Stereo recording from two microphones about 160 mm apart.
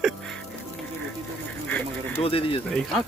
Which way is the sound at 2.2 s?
35° left (ahead or behind).